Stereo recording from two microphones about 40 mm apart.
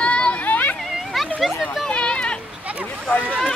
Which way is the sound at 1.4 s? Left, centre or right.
Centre.